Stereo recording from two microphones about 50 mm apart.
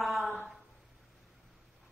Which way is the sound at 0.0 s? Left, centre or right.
Centre.